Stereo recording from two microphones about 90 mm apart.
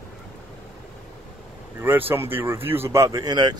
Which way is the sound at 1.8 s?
20° right (ahead or behind).